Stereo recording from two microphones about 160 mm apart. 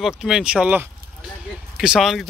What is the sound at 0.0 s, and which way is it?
Speech, 5° right (ahead or behind).